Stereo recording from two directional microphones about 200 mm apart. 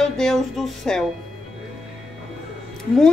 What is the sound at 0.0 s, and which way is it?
Speech, centre (ahead or behind).